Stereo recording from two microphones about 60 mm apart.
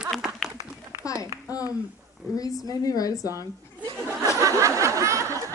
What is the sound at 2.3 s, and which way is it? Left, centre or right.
Speech, left.